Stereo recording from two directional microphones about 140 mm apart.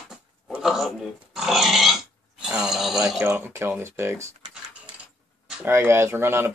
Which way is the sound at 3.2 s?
15° right (ahead or behind).